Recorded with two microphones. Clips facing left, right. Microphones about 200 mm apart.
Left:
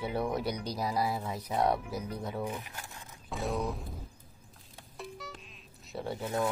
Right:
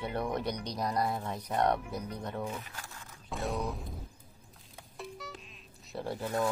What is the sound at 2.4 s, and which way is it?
Speech, 15° left (ahead or behind).